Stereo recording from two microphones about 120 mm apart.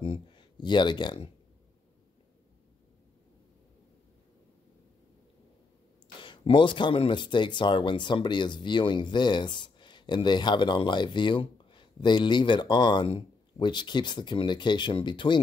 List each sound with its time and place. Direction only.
0.0 s speech: 45° left (ahead or behind)
6.2 s speech: 45° left (ahead or behind)